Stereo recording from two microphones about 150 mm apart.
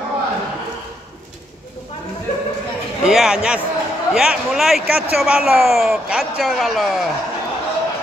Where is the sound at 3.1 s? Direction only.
5° right (ahead or behind).